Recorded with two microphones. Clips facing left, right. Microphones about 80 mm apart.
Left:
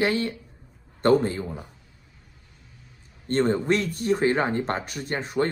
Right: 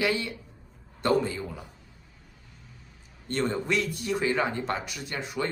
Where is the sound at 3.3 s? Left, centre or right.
Left.